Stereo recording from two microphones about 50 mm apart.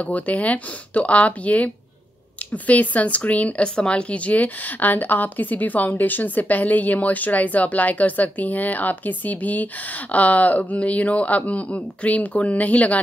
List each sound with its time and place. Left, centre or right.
0.0 s a woman's voice: left